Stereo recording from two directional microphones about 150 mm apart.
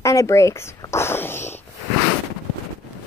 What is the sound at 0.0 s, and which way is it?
Speech, 20° left (ahead or behind).